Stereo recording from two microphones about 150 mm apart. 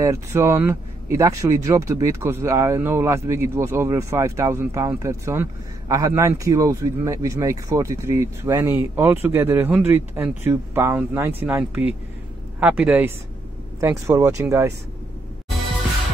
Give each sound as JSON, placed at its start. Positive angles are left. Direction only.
{"t": 0.0, "sound": "speech", "side_deg": -20}